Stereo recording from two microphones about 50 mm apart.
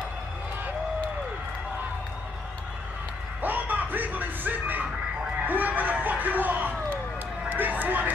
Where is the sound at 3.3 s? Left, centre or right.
Right.